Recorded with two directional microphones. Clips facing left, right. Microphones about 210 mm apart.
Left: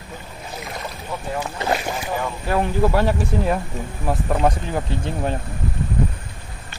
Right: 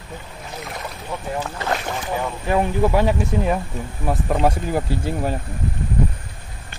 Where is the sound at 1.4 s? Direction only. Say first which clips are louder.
Left 2 dB; 15° left (ahead or behind).